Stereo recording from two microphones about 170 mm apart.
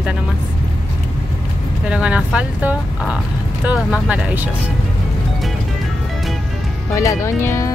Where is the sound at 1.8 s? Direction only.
5° right (ahead or behind).